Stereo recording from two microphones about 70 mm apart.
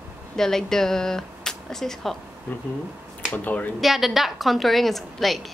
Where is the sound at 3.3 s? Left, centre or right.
Left.